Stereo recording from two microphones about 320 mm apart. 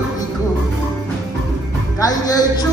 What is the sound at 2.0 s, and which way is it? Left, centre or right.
Speech, centre.